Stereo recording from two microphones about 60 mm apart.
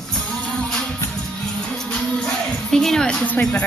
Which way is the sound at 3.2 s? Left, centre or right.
Left.